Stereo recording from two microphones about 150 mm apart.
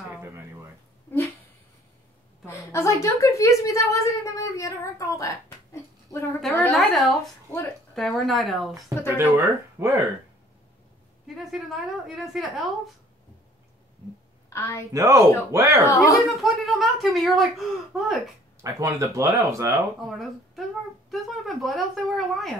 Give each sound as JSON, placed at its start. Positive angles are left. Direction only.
{"t": 2.4, "sound": "a woman's voice", "side_deg": 20}
{"t": 6.7, "sound": "speech", "side_deg": 0}
{"t": 8.8, "sound": "speech", "side_deg": -15}
{"t": 11.5, "sound": "speech", "side_deg": 0}
{"t": 14.5, "sound": "a woman's voice", "side_deg": 15}
{"t": 14.9, "sound": "speech", "side_deg": -20}
{"t": 15.8, "sound": "speech", "side_deg": 20}
{"t": 16.3, "sound": "speech", "side_deg": 0}
{"t": 18.6, "sound": "speech", "side_deg": -20}
{"t": 20.1, "sound": "speech", "side_deg": 0}